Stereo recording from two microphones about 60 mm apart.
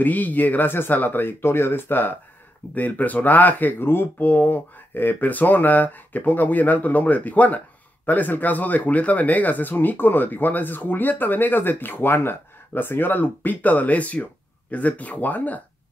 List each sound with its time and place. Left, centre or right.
0.0 s speech: left